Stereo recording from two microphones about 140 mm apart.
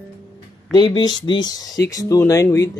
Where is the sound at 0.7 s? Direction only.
30° left (ahead or behind).